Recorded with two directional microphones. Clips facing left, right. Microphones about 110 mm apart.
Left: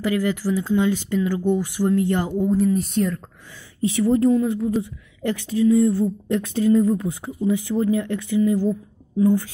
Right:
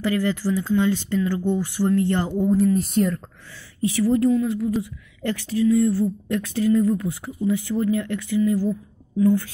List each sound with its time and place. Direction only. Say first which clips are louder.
0.0 s speech: even; 10° left (ahead or behind)
3.8 s speech: left 1 dB; 20° left (ahead or behind)